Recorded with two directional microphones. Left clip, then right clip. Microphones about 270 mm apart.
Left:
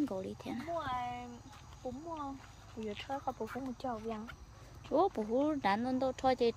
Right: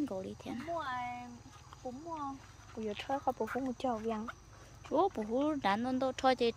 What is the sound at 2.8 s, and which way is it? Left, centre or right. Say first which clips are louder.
Speech: right 3 dB; right.